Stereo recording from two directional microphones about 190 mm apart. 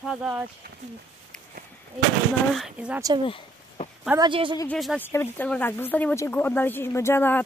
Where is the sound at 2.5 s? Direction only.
5° right (ahead or behind).